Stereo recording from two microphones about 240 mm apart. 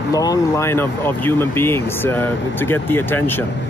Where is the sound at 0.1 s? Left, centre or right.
Centre.